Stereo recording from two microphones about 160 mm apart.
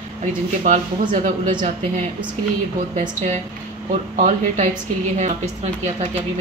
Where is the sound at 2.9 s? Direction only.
45° right (ahead or behind).